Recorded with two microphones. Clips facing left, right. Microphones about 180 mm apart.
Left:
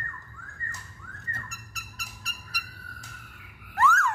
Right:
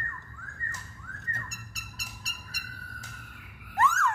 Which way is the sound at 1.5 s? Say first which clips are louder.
Even; 30° right (ahead or behind).